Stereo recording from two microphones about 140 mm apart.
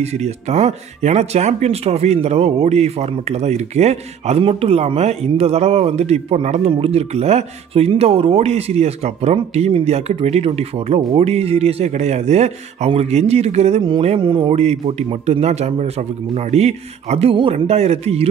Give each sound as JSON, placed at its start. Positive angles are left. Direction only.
{"t": 0.0, "sound": "speech", "side_deg": -50}
{"t": 13.8, "sound": "a sound", "side_deg": -40}
{"t": 14.6, "sound": "speech", "side_deg": -50}